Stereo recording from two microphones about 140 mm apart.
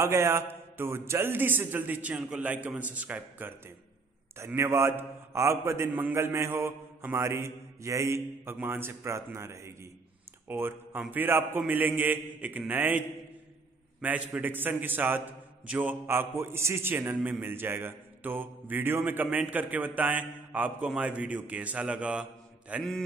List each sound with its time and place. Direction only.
0.0 s a man's voice: 20° right (ahead or behind)
14.0 s a man's voice: 10° right (ahead or behind)